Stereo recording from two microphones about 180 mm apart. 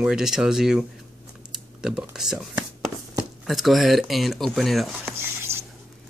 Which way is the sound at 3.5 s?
Centre (ahead or behind).